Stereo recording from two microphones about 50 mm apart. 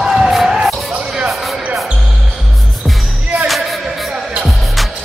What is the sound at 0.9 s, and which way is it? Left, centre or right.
Music, centre.